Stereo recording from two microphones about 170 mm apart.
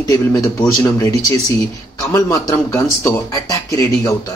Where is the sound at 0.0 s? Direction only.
20° left (ahead or behind).